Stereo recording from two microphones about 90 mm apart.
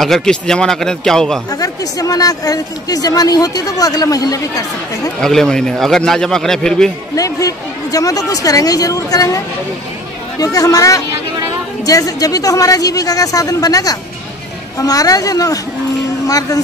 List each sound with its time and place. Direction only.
0.0 s a man's voice: 5° left (ahead or behind)
1.5 s speech: 45° left (ahead or behind)
5.2 s a man's voice: 5° left (ahead or behind)
7.2 s speech: 40° left (ahead or behind)
10.4 s speech: 40° left (ahead or behind)